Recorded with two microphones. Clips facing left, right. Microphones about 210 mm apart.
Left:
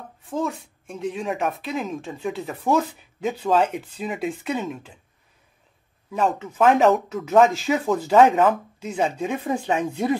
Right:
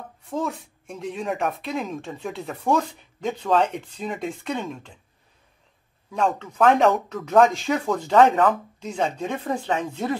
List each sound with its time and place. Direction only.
0.3 s speech: centre (ahead or behind)
6.1 s speech: 5° left (ahead or behind)